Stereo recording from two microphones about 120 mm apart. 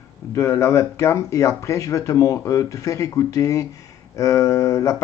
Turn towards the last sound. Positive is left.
turn(degrees=25)  # may be behind; listen again after turning